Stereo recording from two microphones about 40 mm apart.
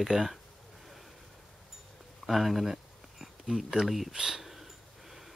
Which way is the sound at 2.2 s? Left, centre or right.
Centre.